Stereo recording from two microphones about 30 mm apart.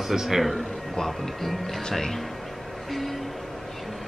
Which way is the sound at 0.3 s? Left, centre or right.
Centre.